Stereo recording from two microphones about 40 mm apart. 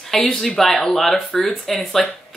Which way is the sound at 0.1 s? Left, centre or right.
Centre.